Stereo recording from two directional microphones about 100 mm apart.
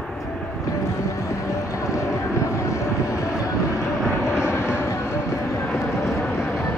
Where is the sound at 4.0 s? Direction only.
5° right (ahead or behind).